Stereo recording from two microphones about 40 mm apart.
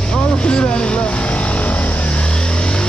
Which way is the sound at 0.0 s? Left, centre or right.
Left.